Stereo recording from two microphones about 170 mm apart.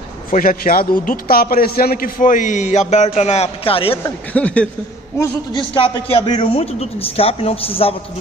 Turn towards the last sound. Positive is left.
turn(degrees=35)  # may be behind; listen again after turning